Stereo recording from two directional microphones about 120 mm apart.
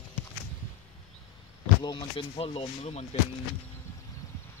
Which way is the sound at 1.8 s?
35° left (ahead or behind).